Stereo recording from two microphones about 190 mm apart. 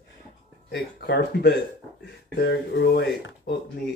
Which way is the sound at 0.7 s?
60° left (ahead or behind).